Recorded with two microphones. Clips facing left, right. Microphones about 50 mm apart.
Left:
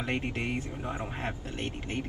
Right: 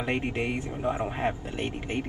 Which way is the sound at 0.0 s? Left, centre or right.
Right.